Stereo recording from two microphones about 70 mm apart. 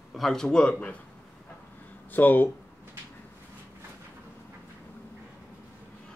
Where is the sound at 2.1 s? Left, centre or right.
Left.